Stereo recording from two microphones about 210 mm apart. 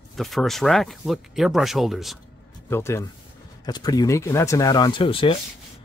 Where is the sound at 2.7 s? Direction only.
10° left (ahead or behind).